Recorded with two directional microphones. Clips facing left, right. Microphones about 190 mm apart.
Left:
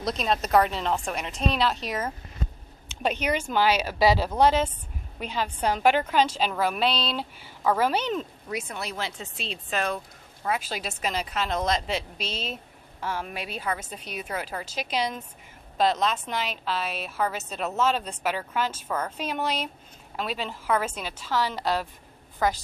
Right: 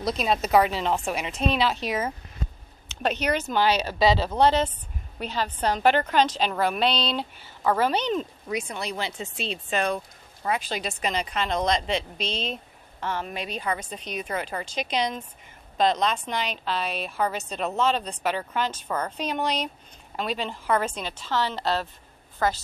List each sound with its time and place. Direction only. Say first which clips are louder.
0.0 s a woman's voice: right 2 dB; 5° right (ahead or behind)
2.9 s a woman's voice: right 1 dB; 10° left (ahead or behind)